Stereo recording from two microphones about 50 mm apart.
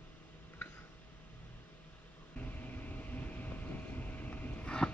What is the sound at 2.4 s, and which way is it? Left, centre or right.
Vehicle, left.